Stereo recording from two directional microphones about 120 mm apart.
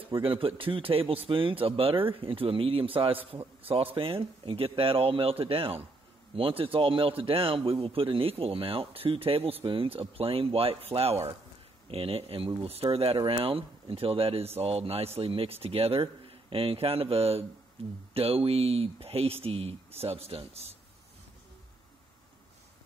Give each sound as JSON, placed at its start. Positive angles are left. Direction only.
{"t": 0.1, "sound": "a man's voice", "side_deg": -50}